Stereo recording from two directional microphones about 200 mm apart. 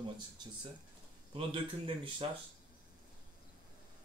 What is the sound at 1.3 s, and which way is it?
Speech, 25° right (ahead or behind).